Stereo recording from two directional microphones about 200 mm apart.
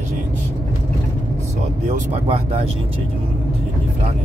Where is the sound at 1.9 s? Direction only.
30° right (ahead or behind).